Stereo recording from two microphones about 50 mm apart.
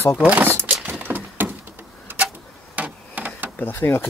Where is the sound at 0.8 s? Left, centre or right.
Right.